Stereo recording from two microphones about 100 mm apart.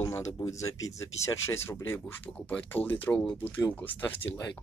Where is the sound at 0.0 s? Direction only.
30° left (ahead or behind).